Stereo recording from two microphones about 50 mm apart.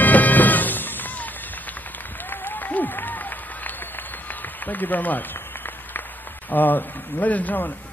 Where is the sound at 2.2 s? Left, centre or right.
Left.